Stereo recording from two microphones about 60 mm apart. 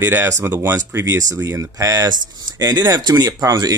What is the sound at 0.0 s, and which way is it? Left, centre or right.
Speech, right.